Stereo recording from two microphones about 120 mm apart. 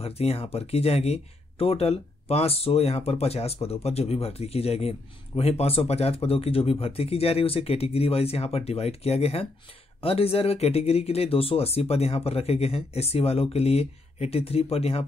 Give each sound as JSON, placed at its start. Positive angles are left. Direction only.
{"t": 0.0, "sound": "a man's voice", "side_deg": 55}